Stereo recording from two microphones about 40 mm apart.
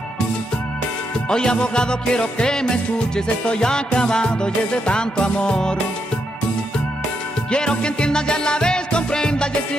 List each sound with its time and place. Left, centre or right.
1.3 s music: centre
7.5 s music: left